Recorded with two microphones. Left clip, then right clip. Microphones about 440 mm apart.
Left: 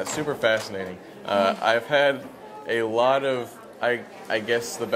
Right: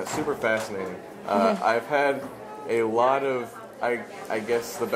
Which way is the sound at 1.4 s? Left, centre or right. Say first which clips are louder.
Left 1 dB; left.